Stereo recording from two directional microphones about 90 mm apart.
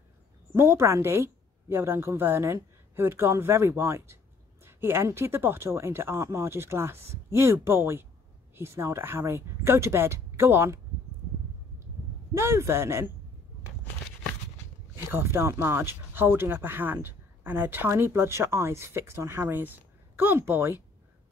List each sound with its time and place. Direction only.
0.6 s speech: 30° right (ahead or behind)
12.4 s speech: 30° right (ahead or behind)
15.0 s speech: 25° right (ahead or behind)